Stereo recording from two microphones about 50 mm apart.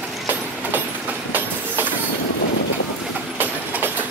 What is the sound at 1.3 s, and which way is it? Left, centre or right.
Train, right.